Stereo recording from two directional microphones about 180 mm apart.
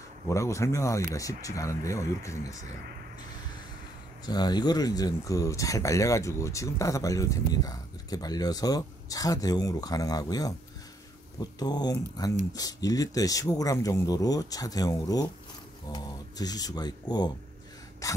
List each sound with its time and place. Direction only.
0.3 s speech: 15° left (ahead or behind)
4.3 s speech: 20° left (ahead or behind)
11.6 s speech: 20° left (ahead or behind)